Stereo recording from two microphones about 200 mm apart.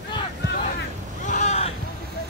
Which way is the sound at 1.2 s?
35° left (ahead or behind).